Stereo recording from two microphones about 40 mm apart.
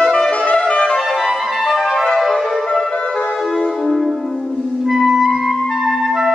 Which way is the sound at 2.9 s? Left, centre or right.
Left.